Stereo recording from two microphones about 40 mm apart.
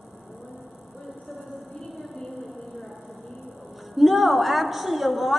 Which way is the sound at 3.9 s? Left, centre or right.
Centre.